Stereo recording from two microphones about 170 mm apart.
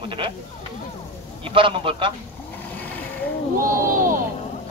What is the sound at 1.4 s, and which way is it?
Speech, 30° right (ahead or behind).